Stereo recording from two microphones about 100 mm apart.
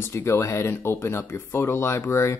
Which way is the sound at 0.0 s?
25° left (ahead or behind).